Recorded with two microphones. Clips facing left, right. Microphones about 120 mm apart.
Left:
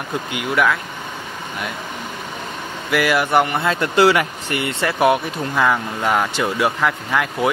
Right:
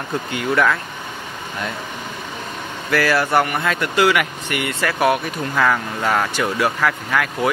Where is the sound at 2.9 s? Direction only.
15° left (ahead or behind).